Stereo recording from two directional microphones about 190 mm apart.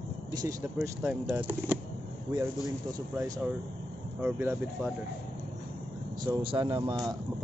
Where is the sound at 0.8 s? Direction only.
5° right (ahead or behind).